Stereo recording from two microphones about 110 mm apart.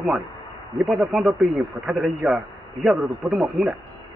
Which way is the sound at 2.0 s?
20° right (ahead or behind).